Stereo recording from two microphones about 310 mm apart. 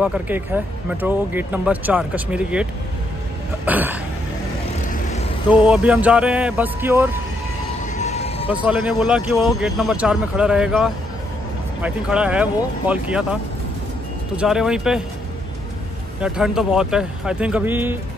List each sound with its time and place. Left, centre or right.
0.0 s speech: centre
5.5 s speech: centre
7.9 s a sound: left
8.5 s speech: centre
16.2 s speech: centre